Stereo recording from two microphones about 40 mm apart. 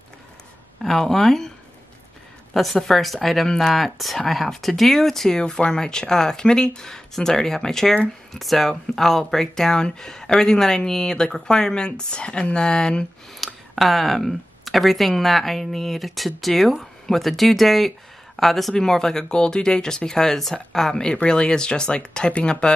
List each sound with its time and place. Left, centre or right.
0.8 s speech: centre
2.5 s a woman's voice: centre
5.4 s speech: left
13.5 s speech: centre; by 22.7 s left